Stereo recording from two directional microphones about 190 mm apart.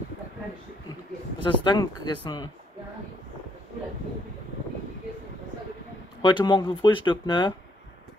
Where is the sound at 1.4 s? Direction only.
25° left (ahead or behind).